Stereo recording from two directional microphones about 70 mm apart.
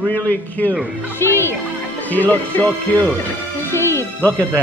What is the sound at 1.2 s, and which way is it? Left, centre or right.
Speech, left.